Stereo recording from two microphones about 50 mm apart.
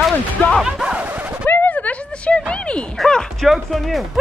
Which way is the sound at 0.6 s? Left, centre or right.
Centre.